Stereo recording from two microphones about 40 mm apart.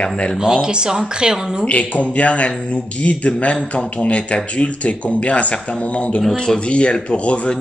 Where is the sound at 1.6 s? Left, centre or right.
Left.